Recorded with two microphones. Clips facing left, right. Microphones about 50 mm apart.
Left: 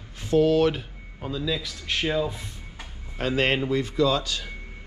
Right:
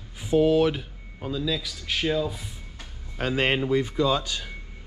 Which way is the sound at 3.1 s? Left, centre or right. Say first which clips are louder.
Left 1 dB; right.